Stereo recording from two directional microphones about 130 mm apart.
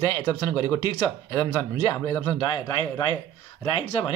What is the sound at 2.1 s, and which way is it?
Speech, 30° left (ahead or behind).